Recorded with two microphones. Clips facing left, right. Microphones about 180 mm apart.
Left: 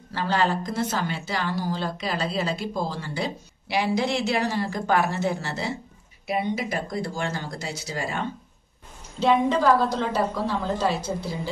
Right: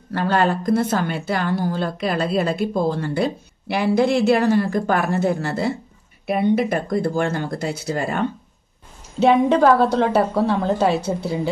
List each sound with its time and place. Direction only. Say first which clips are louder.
0.1 s a woman's voice: right 5 dB; 55° right (ahead or behind)